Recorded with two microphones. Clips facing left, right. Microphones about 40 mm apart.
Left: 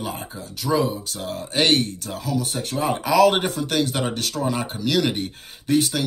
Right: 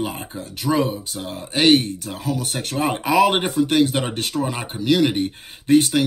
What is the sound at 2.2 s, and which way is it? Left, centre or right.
Speech, right.